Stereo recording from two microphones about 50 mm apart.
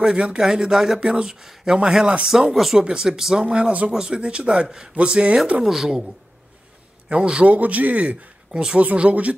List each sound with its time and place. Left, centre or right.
0.0 s speech: centre
3.4 s speech: right
5.6 s speech: centre
7.1 s speech: centre
7.4 s speech: right